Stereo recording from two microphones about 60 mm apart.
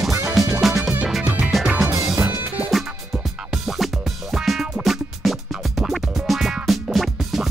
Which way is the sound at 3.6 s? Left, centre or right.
Centre.